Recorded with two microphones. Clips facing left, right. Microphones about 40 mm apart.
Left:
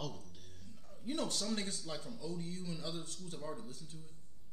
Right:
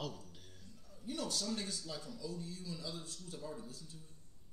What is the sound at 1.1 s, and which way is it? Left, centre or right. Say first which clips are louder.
A man's voice: left 2 dB; left.